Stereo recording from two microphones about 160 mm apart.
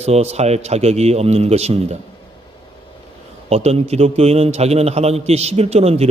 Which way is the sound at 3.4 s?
40° right (ahead or behind).